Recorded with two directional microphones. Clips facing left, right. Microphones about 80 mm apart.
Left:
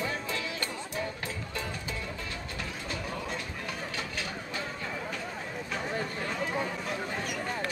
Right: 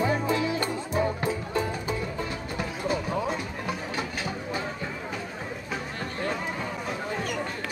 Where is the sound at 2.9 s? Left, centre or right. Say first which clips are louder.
Right 8 dB; centre.